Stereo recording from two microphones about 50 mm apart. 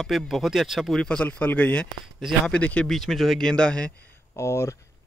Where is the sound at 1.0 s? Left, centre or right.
Left.